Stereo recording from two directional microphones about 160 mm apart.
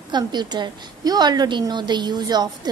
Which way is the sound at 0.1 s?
25° right (ahead or behind).